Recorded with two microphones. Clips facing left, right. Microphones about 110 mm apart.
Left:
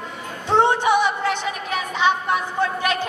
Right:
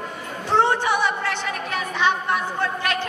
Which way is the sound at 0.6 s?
20° left (ahead or behind).